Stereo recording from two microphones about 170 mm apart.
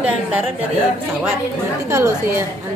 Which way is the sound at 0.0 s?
10° right (ahead or behind).